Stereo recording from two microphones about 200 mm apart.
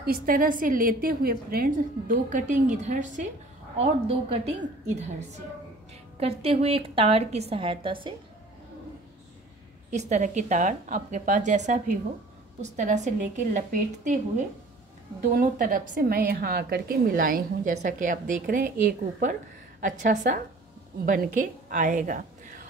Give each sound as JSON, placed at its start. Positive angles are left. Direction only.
{"t": 0.0, "sound": "a woman's voice", "side_deg": -45}
{"t": 6.1, "sound": "a woman's voice", "side_deg": -30}
{"t": 9.8, "sound": "a woman's voice", "side_deg": -35}